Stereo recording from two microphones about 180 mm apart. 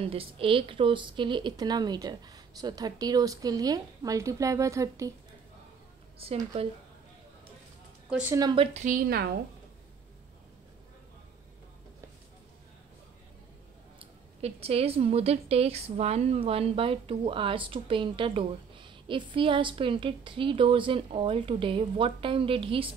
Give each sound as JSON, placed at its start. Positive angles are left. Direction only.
{"t": 0.0, "sound": "a woman's voice", "side_deg": -30}
{"t": 6.1, "sound": "speech", "side_deg": -30}
{"t": 8.1, "sound": "a woman's voice", "side_deg": -10}
{"t": 8.4, "sound": "a woman's voice", "side_deg": -25}
{"t": 8.7, "sound": "a woman's voice", "side_deg": -45}
{"t": 13.9, "sound": "a woman's voice", "side_deg": -35}